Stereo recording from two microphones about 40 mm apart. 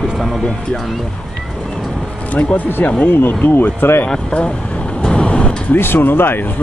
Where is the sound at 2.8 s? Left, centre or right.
Left.